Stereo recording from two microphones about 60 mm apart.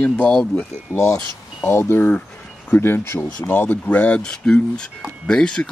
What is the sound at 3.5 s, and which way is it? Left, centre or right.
Speech, left.